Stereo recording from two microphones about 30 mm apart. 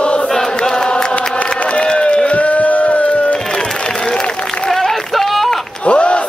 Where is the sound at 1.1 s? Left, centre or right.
Left.